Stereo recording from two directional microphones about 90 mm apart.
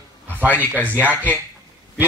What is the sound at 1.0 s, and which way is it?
Speech, 20° right (ahead or behind).